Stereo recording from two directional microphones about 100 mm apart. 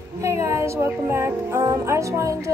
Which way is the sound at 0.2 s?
30° right (ahead or behind).